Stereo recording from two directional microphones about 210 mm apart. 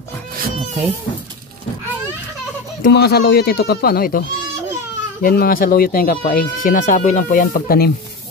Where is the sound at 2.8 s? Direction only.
50° left (ahead or behind).